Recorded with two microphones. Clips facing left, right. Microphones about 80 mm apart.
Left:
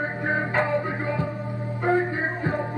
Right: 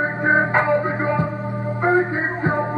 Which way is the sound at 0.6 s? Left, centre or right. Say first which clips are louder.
Right 6 dB; right.